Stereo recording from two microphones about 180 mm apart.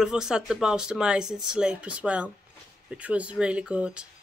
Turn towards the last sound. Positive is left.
turn(degrees=-5)  # may be behind; listen again after turning